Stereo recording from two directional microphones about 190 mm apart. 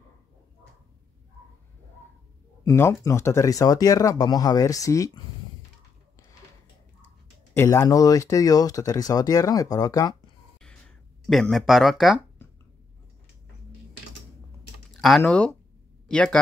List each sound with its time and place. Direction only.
2.6 s speech: 15° left (ahead or behind)
7.5 s speech: 15° left (ahead or behind)
11.2 s speech: centre (ahead or behind)
15.0 s speech: centre (ahead or behind)